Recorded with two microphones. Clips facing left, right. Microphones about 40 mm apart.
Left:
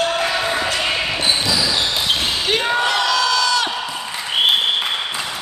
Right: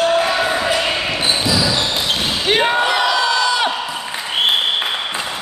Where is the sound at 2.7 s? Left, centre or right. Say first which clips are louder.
Right 2 dB; centre.